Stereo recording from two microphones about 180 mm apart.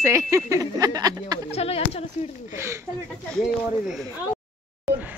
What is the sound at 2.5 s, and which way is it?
Speech, 15° right (ahead or behind).